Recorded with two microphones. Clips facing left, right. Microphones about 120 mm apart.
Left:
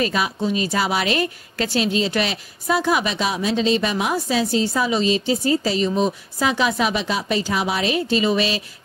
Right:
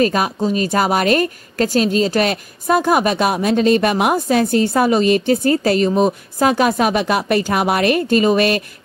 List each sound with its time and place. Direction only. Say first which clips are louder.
0.0 s a woman's voice: right 5 dB; 45° right (ahead or behind)